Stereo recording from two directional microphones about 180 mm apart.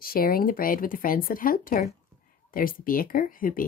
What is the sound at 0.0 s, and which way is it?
Speech, 55° left (ahead or behind).